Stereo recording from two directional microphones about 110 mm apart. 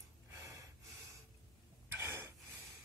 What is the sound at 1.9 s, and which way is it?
Gasp, 25° right (ahead or behind).